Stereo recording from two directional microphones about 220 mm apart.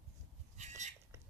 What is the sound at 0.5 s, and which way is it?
Squawk, 30° right (ahead or behind).